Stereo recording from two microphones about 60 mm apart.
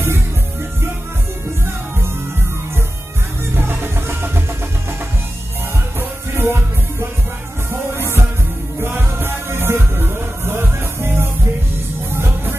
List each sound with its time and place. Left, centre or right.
3.5 s music: right
5.9 s music: right